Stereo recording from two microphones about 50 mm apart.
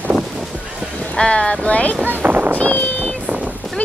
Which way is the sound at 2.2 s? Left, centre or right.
Right.